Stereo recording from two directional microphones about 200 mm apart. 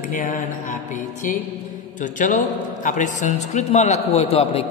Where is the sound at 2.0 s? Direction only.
40° left (ahead or behind).